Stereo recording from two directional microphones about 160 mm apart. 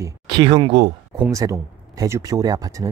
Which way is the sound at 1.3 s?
20° right (ahead or behind).